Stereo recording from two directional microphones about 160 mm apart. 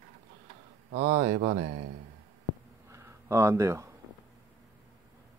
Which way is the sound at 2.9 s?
20° right (ahead or behind).